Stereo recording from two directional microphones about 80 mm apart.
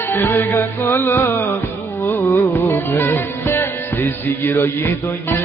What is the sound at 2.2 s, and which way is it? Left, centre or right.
Music, left.